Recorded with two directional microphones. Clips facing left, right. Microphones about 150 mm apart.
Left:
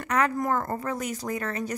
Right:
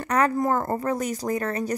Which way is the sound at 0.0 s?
35° right (ahead or behind).